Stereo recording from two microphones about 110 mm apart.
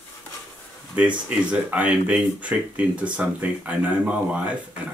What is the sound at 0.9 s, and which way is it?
Speech, 10° right (ahead or behind).